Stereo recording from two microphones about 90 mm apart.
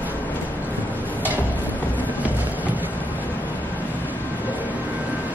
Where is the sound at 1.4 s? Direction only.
20° right (ahead or behind).